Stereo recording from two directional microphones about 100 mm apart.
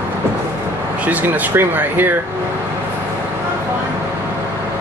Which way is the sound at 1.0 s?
20° right (ahead or behind).